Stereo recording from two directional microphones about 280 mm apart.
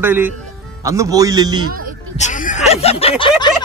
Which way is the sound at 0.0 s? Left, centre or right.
Centre.